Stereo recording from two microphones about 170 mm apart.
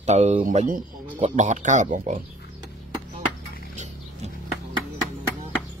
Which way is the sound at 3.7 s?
45° right (ahead or behind).